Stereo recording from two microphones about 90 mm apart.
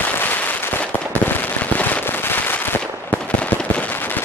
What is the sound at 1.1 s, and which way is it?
Fireworks, 20° left (ahead or behind).